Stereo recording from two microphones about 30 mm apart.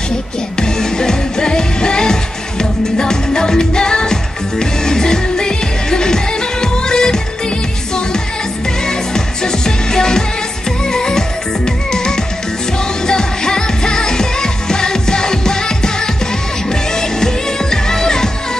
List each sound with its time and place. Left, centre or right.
0.6 s music: left
8.8 s music: left
17.2 s music: centre